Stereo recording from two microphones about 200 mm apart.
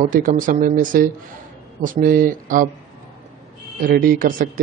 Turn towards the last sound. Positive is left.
turn(degrees=-45)  # may be behind; listen again after turning